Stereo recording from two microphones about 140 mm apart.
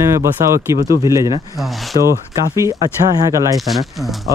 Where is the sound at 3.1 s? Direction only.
25° right (ahead or behind).